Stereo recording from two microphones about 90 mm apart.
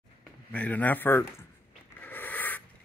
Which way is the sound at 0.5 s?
15° left (ahead or behind).